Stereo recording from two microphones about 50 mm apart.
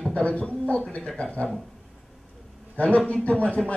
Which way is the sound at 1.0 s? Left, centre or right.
Centre.